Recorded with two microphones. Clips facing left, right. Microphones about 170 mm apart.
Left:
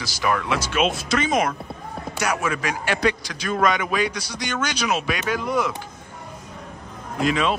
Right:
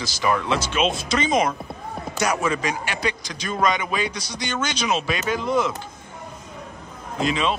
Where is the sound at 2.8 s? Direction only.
50° left (ahead or behind).